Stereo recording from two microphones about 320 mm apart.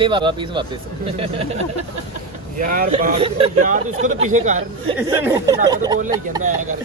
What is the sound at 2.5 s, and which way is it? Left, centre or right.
Speech, right.